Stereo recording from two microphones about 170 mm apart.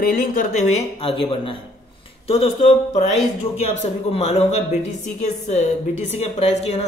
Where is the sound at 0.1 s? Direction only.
55° left (ahead or behind).